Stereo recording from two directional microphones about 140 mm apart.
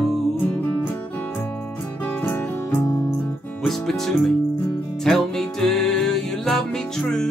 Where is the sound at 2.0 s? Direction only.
15° left (ahead or behind).